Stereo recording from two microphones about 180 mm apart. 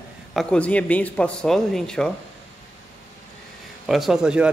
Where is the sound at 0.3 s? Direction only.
5° left (ahead or behind).